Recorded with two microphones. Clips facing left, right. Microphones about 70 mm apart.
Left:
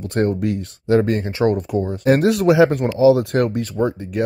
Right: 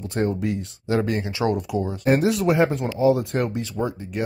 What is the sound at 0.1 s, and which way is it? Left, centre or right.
Speech, left.